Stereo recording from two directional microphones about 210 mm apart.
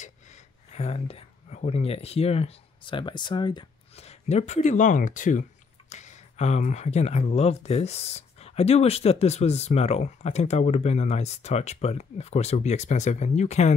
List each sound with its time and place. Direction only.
0.7 s speech: 30° left (ahead or behind)